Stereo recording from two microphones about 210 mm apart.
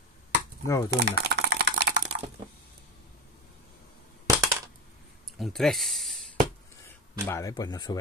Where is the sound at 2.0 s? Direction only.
35° right (ahead or behind).